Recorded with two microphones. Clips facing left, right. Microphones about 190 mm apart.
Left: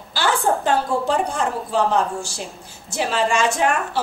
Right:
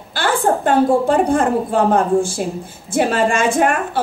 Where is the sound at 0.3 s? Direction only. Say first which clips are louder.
Right 4 dB; centre (ahead or behind).